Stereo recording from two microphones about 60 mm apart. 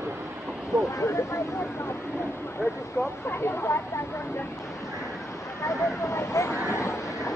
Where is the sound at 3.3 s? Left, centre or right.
Left.